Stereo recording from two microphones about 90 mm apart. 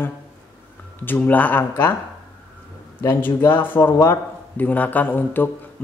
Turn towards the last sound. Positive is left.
turn(degrees=20)  # may be behind; listen again after turning